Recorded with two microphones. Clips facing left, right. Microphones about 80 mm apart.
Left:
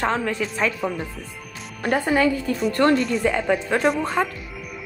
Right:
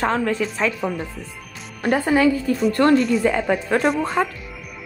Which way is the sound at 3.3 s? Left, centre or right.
Centre.